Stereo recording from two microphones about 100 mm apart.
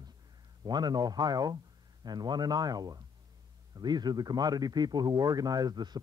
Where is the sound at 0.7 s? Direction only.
45° right (ahead or behind).